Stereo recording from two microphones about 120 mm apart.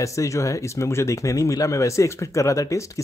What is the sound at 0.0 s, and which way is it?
Speech, 25° left (ahead or behind).